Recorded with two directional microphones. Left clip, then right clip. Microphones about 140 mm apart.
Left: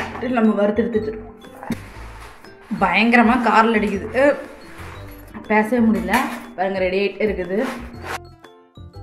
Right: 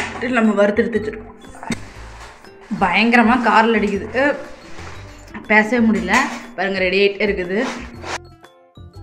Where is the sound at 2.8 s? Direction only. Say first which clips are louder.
Right 1 dB; centre (ahead or behind).